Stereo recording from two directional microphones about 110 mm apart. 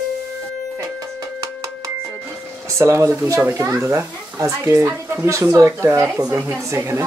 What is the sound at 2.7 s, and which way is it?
Speech, 25° right (ahead or behind).